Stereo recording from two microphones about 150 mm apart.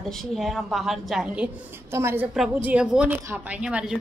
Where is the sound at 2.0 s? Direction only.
15° right (ahead or behind).